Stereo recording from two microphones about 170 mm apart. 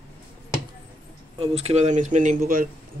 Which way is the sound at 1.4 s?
35° right (ahead or behind).